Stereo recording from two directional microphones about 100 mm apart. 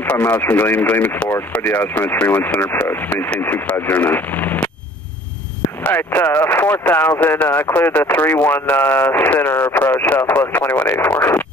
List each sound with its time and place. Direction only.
0.0 s speech: 15° left (ahead or behind)
5.9 s speech: 20° left (ahead or behind)